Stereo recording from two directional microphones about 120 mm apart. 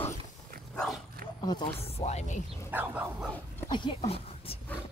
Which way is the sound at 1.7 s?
55° left (ahead or behind).